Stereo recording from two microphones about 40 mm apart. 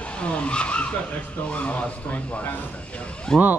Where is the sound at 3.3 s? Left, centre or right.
Centre.